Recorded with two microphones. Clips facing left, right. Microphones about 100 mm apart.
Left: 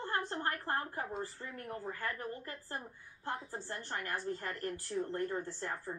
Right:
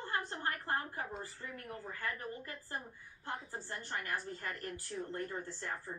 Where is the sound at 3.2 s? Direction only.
35° left (ahead or behind).